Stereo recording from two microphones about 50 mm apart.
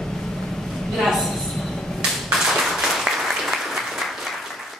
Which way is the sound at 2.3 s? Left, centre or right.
Centre.